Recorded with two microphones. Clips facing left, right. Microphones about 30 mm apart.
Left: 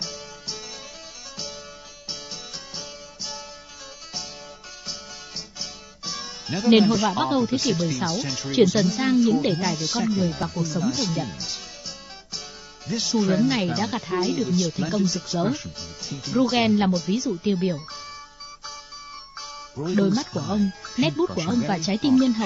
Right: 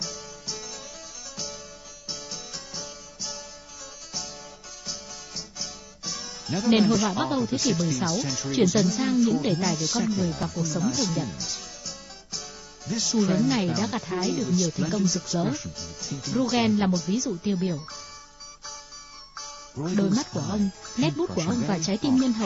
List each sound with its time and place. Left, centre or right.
0.0 s music: left
4.8 s speech: left
19.3 s music: centre
20.1 s speech: centre